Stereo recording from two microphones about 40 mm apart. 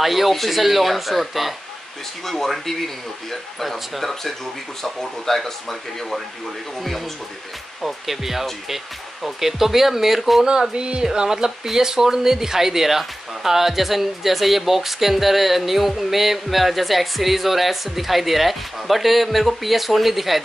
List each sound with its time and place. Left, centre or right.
0.0 s speech: centre
7.8 s speech: centre
10.4 s speech: centre
11.1 s speech: centre